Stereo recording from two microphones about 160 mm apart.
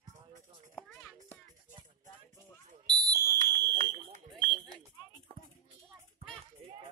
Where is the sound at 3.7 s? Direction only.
50° right (ahead or behind).